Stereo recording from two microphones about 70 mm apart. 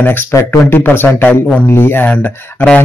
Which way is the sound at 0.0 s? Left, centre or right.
Left.